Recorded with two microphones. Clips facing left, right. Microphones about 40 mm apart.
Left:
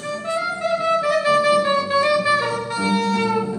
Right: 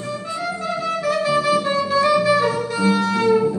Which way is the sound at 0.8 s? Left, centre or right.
Left.